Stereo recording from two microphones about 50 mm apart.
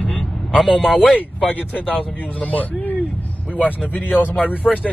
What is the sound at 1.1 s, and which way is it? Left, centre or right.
Speech, left.